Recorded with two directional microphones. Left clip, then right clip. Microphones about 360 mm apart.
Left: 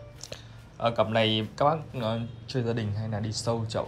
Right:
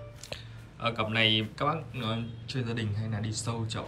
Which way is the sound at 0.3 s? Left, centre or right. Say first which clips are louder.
Right 1 dB; centre.